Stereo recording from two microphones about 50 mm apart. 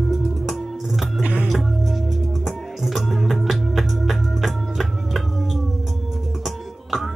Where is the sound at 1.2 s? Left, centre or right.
Right.